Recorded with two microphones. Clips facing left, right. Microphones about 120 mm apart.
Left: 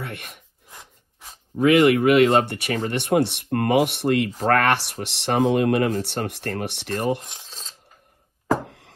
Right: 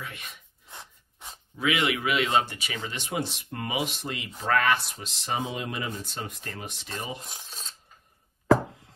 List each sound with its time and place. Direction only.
0.0 s a sound: 65° left (ahead or behind)
1.6 s speech: 50° left (ahead or behind); by 7.2 s 75° left (ahead or behind)
7.3 s filing: 5° right (ahead or behind)
8.6 s music: 75° left (ahead or behind)